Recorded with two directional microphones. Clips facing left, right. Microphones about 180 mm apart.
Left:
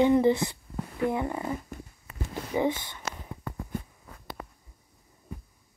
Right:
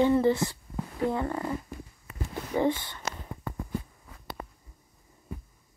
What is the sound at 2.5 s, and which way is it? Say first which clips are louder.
Speech: even; 10° left (ahead or behind).